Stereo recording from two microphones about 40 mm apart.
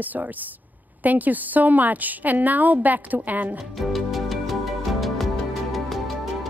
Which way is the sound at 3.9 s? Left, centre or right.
Centre.